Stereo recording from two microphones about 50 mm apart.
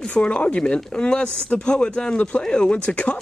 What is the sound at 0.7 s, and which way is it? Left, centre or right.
Speech, centre.